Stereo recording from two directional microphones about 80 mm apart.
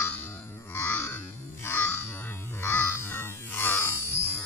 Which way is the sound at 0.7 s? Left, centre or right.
Left.